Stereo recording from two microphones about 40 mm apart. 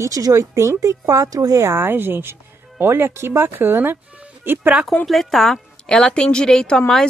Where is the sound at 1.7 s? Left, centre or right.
Right.